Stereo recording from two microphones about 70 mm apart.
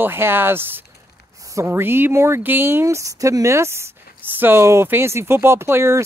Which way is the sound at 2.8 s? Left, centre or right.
Right.